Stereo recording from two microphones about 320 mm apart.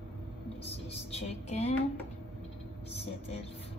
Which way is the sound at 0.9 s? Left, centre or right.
Centre.